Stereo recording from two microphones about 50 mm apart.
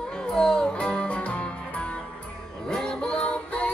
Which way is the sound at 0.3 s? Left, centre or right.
Centre.